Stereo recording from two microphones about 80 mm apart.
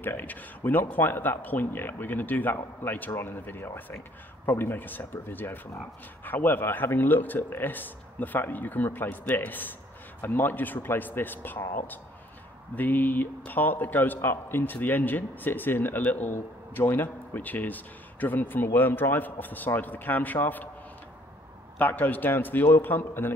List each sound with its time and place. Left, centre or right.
0.0 s speech: left
12.7 s speech: left
21.7 s speech: left